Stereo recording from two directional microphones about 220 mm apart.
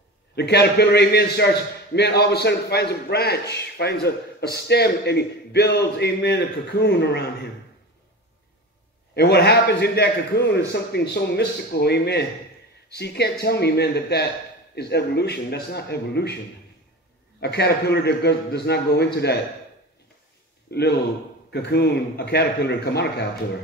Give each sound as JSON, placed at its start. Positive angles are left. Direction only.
{"t": 0.4, "sound": "a man's voice", "side_deg": 50}
{"t": 9.1, "sound": "a man's voice", "side_deg": 50}
{"t": 17.4, "sound": "a man's voice", "side_deg": 50}
{"t": 20.7, "sound": "a man's voice", "side_deg": 50}